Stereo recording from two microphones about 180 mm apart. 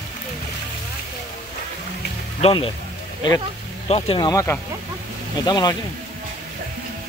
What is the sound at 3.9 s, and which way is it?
Speech, 30° left (ahead or behind).